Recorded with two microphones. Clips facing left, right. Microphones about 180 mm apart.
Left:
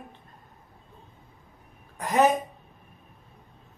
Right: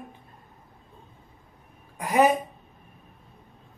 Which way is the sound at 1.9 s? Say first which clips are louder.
Right 1 dB; 10° right (ahead or behind).